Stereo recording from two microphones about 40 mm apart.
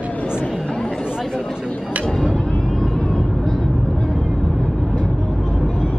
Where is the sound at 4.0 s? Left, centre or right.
Centre.